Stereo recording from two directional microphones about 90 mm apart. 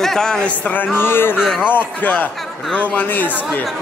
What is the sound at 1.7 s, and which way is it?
Speech, 20° left (ahead or behind).